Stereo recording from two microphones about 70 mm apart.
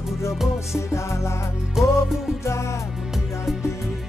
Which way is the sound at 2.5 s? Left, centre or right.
Left.